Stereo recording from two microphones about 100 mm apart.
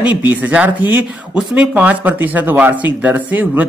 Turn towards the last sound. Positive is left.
turn(degrees=-20)  # may be behind; listen again after turning